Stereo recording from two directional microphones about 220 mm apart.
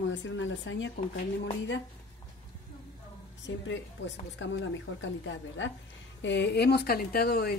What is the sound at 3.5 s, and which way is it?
Speech, 55° left (ahead or behind).